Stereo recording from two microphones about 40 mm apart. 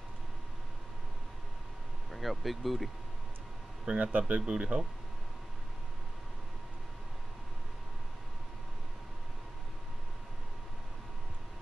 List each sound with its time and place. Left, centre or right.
2.1 s speech: centre
3.8 s speech: right